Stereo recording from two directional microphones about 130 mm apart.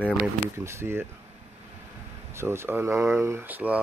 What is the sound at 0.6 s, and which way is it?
Speech, 20° right (ahead or behind).